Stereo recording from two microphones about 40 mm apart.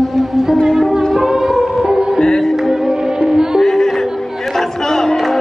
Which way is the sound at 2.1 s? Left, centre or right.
Centre.